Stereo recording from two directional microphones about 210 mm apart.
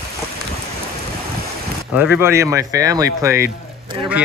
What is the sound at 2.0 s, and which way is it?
Speech, 10° right (ahead or behind).